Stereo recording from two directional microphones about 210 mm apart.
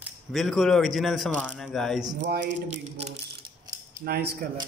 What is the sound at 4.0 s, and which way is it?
Speech, 50° right (ahead or behind).